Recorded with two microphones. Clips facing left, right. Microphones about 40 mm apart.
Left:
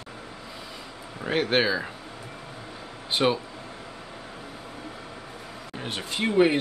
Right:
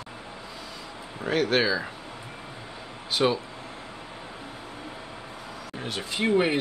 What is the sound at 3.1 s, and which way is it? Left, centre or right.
Speech, left.